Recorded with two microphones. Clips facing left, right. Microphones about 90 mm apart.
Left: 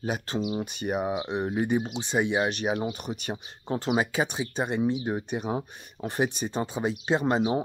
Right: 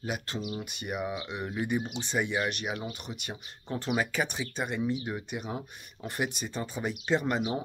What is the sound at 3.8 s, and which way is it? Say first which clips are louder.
Speech: left 3 dB; 20° left (ahead or behind).